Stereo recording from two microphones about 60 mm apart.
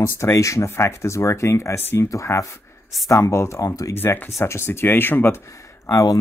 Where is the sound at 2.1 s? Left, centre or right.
Left.